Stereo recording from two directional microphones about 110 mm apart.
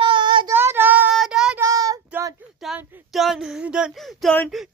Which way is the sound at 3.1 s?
5° right (ahead or behind).